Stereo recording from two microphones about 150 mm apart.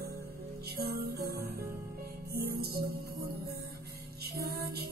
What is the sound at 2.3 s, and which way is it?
Music, 90° right.